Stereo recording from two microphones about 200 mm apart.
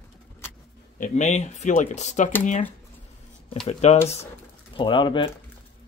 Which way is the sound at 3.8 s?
35° left (ahead or behind).